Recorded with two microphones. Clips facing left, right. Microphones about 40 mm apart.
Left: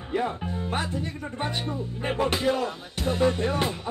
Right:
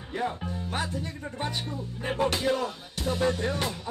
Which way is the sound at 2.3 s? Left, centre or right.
Centre.